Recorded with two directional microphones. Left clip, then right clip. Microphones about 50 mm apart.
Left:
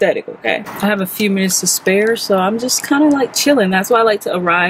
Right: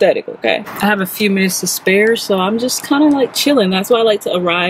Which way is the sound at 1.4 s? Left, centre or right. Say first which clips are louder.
Even; right.